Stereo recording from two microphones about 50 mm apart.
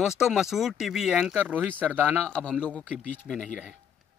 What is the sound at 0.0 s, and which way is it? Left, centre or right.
Speech, centre.